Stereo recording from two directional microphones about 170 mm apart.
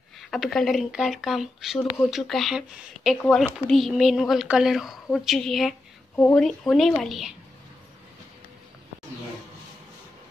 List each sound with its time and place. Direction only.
0.2 s speech: centre (ahead or behind)